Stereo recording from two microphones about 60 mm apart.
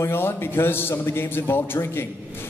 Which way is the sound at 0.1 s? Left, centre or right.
Left.